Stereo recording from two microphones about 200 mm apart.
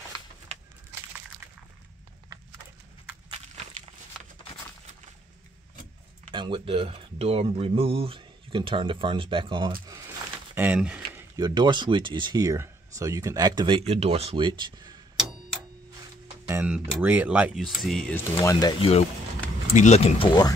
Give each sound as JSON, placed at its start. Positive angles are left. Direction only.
{"t": 6.3, "sound": "speech", "side_deg": -25}
{"t": 10.5, "sound": "a sound", "side_deg": -10}
{"t": 11.3, "sound": "speech", "side_deg": -20}
{"t": 16.4, "sound": "speech", "side_deg": -10}
{"t": 18.4, "sound": "speech", "side_deg": 15}